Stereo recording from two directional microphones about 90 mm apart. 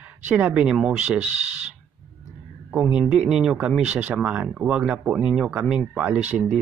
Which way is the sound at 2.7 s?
5° right (ahead or behind).